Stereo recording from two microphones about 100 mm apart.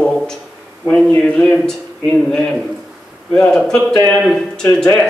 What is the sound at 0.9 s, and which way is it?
Speech, 10° left (ahead or behind).